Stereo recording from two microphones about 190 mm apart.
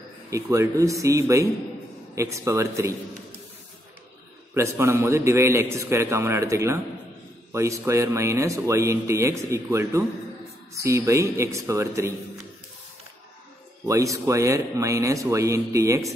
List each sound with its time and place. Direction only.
0.3 s speech: 15° right (ahead or behind)
4.6 s speech: 15° right (ahead or behind)
13.8 s speech: 15° right (ahead or behind)